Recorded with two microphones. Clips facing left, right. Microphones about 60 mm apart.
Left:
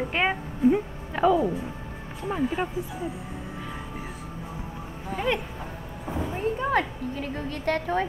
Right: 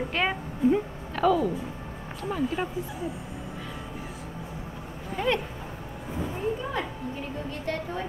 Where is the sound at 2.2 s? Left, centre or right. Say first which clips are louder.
Left 2 dB; centre.